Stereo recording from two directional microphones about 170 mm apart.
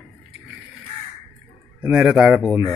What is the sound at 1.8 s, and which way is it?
Speech, 5° right (ahead or behind).